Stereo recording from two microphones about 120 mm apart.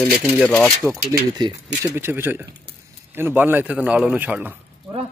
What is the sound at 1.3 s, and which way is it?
Speech, 30° right (ahead or behind).